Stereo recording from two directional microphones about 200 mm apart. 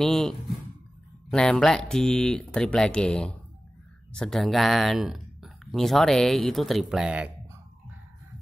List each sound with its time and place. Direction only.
0.0 s speech: centre (ahead or behind)